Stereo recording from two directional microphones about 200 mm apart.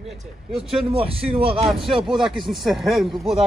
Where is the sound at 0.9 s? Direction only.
30° right (ahead or behind).